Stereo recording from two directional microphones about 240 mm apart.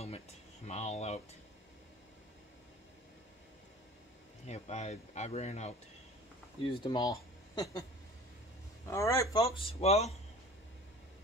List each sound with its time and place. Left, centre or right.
0.7 s speech: left
4.5 s speech: left
8.9 s speech: centre